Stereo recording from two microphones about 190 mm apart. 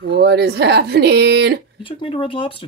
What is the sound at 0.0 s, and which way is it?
Speech, 60° right (ahead or behind).